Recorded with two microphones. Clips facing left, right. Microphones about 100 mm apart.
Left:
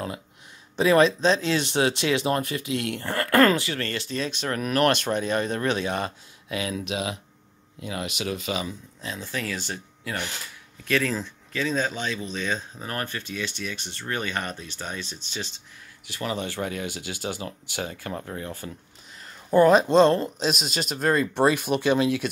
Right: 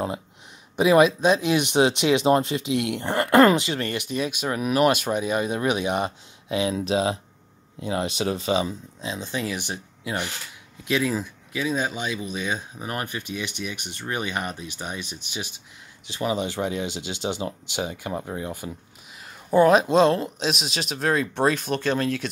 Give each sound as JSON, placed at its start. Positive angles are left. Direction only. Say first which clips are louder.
{"t": 0.7, "sound": "speech", "louder": "right 2 dB", "side_deg": -15}
{"t": 9.0, "sound": "speech", "louder": "right 3 dB", "side_deg": -20}
{"t": 19.5, "sound": "speech", "louder": "even", "side_deg": 0}